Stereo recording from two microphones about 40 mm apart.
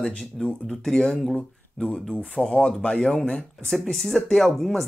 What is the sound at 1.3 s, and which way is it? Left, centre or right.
Speech, left.